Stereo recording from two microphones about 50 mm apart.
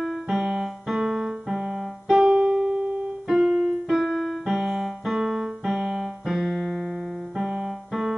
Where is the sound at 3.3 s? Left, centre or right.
Centre.